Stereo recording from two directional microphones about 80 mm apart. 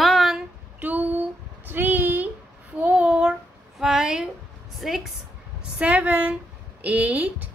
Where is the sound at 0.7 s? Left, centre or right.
Right.